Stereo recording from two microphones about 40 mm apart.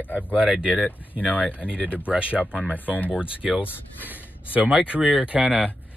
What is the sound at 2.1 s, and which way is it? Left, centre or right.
Speech, right.